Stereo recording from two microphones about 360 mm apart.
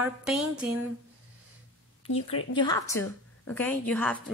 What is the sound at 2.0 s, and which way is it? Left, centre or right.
Speech, left.